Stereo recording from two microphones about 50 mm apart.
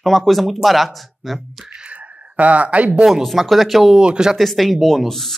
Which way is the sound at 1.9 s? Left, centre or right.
Right.